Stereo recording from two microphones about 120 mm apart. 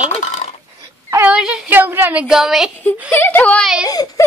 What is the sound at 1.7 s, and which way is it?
A child's voice, 15° right (ahead or behind).